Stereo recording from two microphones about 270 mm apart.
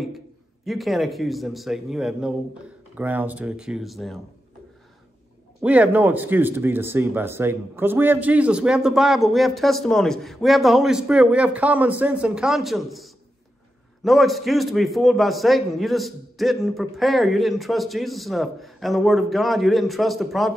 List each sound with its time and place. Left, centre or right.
0.7 s speech: centre
5.6 s speech: centre